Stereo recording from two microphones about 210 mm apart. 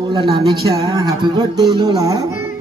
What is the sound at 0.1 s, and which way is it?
A man's voice, 20° right (ahead or behind).